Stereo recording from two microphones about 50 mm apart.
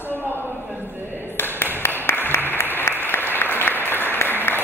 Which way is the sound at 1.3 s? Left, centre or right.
Left.